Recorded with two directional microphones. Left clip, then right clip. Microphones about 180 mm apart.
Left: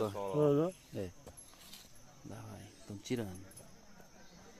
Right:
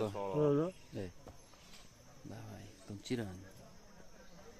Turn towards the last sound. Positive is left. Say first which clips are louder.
# left 1 dB
turn(degrees=10)  # may be behind; listen again after turning